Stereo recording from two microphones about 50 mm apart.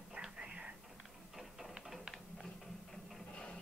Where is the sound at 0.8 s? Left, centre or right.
Centre.